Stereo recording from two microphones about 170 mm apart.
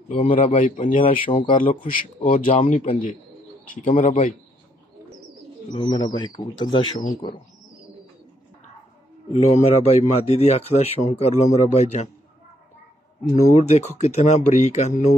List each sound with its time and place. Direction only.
0.3 s speech: 45° left (ahead or behind)
1.4 s speech: 35° left (ahead or behind)
5.8 s a man's voice: 25° left (ahead or behind)
9.3 s speech: 40° left (ahead or behind)
13.3 s speech: 40° left (ahead or behind)